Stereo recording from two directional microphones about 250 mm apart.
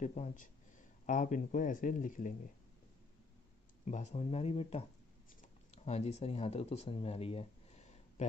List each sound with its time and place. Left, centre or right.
0.0 s speech: left
3.8 s speech: left
5.9 s speech: left